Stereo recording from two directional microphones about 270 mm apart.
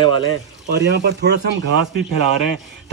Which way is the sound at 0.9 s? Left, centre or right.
Right.